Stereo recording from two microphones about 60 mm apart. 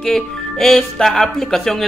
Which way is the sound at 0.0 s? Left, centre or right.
Centre.